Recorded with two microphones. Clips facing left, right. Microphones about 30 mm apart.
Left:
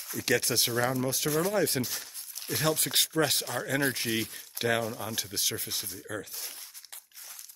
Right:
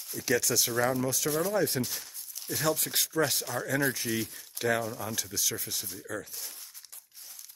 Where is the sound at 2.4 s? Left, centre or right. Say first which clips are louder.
Left 1 dB; left.